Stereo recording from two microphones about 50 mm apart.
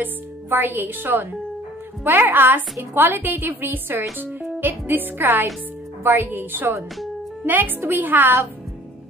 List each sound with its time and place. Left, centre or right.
0.0 s speech: right